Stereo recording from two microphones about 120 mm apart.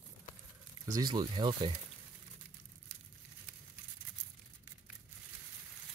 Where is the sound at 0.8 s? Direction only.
30° right (ahead or behind).